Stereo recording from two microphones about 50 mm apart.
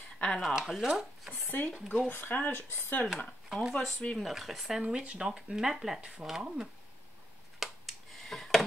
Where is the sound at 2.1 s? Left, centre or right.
Left.